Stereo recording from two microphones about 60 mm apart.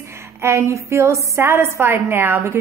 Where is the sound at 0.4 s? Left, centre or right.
Right.